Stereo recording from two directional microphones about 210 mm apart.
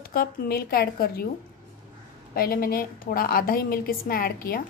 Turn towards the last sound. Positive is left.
turn(degrees=45)  # may be behind; listen again after turning